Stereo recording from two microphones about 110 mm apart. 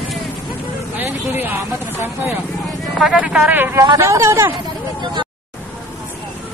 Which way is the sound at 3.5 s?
20° right (ahead or behind).